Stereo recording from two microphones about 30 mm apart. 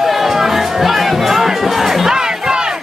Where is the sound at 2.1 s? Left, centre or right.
Right.